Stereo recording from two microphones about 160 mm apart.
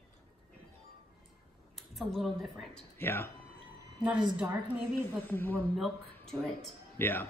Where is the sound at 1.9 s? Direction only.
Centre (ahead or behind).